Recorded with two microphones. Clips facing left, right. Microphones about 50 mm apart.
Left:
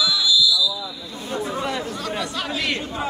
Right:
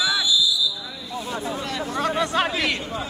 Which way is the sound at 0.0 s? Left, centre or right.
Right.